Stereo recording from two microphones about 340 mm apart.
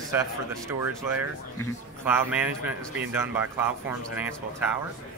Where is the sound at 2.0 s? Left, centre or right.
Centre.